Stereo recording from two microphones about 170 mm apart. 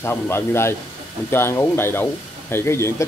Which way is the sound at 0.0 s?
15° left (ahead or behind).